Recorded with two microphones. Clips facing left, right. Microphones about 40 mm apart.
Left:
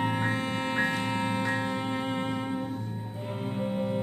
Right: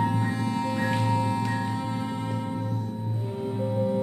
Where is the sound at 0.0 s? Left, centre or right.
Left.